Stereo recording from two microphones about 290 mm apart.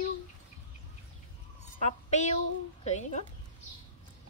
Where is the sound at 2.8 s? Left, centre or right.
Left.